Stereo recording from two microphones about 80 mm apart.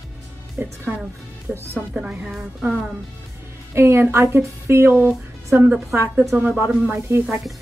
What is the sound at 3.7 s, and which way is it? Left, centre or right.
A woman's voice, right.